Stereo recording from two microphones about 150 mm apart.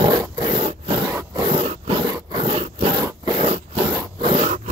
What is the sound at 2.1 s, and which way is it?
Roar, 35° right (ahead or behind).